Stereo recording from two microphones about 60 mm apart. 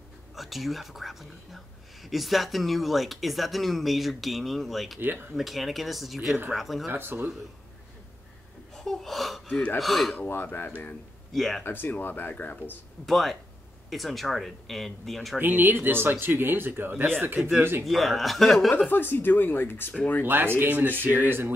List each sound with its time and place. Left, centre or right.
0.4 s speech: centre
6.9 s speech: right
8.7 s speech: centre
10.1 s speech: left
11.3 s speech: centre
11.6 s speech: left
13.0 s speech: centre
15.3 s speech: right
17.8 s speech: centre
18.9 s speech: left
20.2 s speech: right